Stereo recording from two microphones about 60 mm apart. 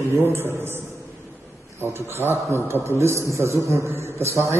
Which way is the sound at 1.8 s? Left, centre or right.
Right.